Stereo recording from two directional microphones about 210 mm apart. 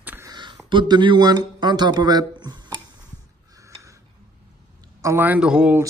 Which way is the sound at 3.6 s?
15° right (ahead or behind).